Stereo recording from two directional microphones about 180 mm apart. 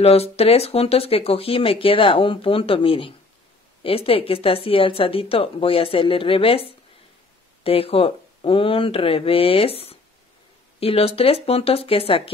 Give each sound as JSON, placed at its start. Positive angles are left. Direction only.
{"t": 0.0, "sound": "speech", "side_deg": 35}